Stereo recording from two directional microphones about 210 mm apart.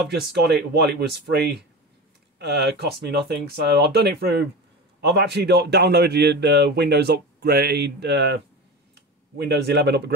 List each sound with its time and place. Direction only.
0.0 s a man's voice: 50° right (ahead or behind)
9.4 s a man's voice: 50° right (ahead or behind)